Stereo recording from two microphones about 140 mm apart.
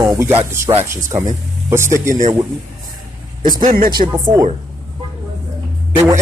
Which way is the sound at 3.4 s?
80° right.